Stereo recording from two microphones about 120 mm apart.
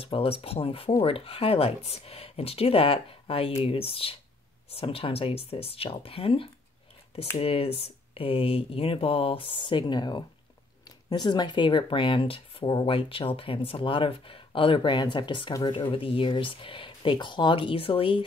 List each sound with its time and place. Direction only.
0.0 s speech: 50° left (ahead or behind)